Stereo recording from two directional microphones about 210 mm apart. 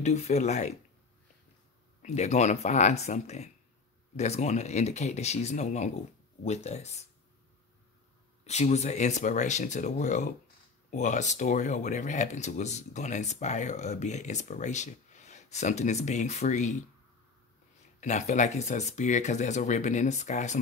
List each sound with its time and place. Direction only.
0.0 s speech: 30° left (ahead or behind)
2.0 s speech: 30° left (ahead or behind)
8.5 s speech: 30° left (ahead or behind)
18.0 s speech: 35° left (ahead or behind)